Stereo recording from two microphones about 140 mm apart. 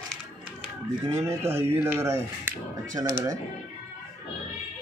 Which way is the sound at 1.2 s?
20° right (ahead or behind).